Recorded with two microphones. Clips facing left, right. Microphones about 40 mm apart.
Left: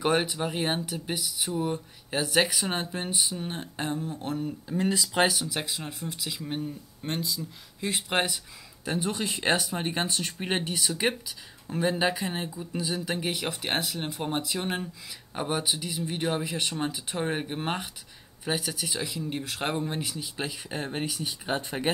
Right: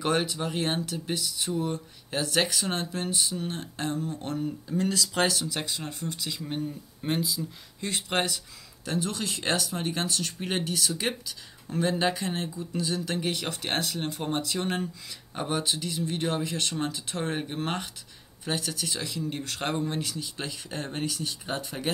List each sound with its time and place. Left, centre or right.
0.0 s speech: centre
4.7 s speech: centre
7.8 s speech: centre
21.5 s speech: left